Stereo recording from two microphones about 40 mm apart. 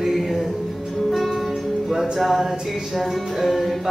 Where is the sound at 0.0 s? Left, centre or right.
Centre.